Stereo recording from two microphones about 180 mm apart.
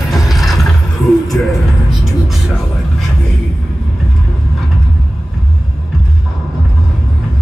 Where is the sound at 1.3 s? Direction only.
10° left (ahead or behind).